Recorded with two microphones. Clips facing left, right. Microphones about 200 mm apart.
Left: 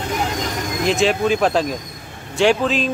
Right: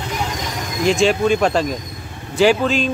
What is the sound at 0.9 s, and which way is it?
Speech, centre (ahead or behind).